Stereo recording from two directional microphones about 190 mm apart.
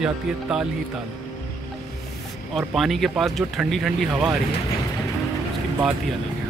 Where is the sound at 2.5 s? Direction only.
Centre (ahead or behind).